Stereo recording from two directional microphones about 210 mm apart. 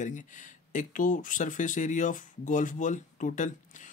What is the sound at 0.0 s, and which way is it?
Speech, 35° left (ahead or behind).